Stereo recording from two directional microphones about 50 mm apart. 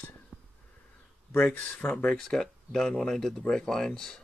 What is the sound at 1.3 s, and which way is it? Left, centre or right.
Speech, left.